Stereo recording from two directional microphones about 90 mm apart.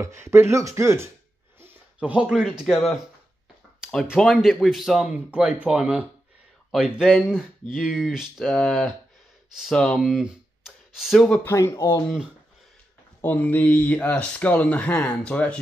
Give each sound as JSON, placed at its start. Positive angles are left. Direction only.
{"t": 0.0, "sound": "speech", "side_deg": -30}
{"t": 3.8, "sound": "speech", "side_deg": -10}
{"t": 4.2, "sound": "speech", "side_deg": 5}
{"t": 5.3, "sound": "speech", "side_deg": -15}
{"t": 8.5, "sound": "speech", "side_deg": 5}
{"t": 9.9, "sound": "a sound", "side_deg": -5}
{"t": 11.4, "sound": "speech", "side_deg": 35}
{"t": 13.2, "sound": "speech", "side_deg": 20}